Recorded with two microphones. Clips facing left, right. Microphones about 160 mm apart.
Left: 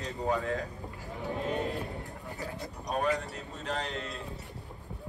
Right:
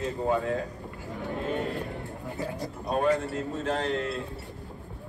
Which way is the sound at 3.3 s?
40° right (ahead or behind).